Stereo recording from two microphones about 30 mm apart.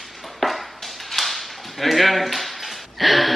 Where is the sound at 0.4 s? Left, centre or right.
Centre.